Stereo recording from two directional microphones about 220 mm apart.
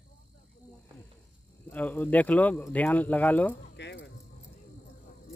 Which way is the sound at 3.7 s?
50° left (ahead or behind).